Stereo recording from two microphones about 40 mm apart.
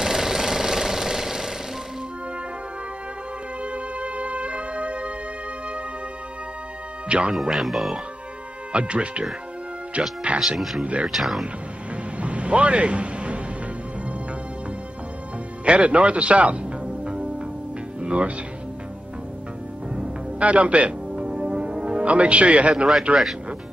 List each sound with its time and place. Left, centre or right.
0.0 s jackhammer: centre
3.6 s music: right
7.1 s speech: right
7.3 s speech: centre
8.7 s speech: right
11.1 s speech: centre
12.2 s a sound: right
15.6 s speech: right
17.0 s music: right
18.0 s speech: right
20.0 s music: right
22.0 s speech: right